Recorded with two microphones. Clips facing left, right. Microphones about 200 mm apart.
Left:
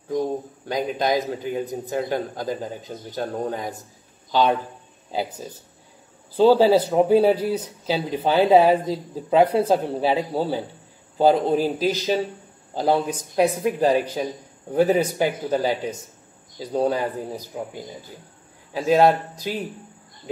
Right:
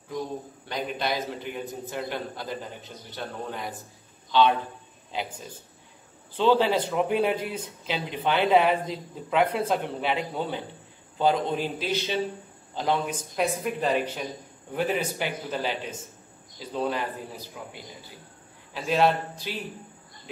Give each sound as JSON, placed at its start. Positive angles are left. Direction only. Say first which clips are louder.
{"t": 0.1, "sound": "a man's voice", "louder": "left 8 dB", "side_deg": 45}
{"t": 6.3, "sound": "speech", "louder": "left 7 dB", "side_deg": 40}